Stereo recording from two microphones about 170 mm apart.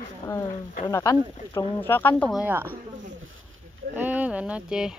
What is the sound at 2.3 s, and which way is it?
Speech, 10° right (ahead or behind).